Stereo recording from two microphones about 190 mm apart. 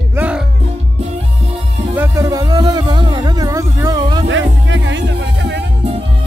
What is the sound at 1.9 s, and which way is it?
Music, 15° right (ahead or behind).